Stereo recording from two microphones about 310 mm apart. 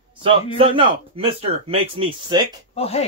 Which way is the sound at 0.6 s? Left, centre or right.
Centre.